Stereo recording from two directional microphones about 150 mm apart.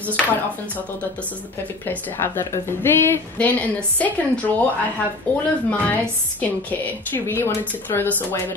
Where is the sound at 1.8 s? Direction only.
15° left (ahead or behind).